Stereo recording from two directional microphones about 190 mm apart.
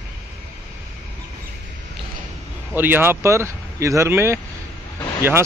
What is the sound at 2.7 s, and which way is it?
Speech, 10° right (ahead or behind).